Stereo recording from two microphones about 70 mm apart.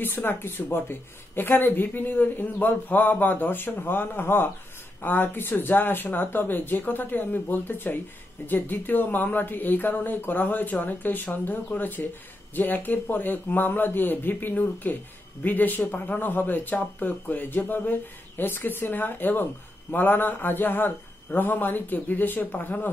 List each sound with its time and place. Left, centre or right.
0.0 s speech: left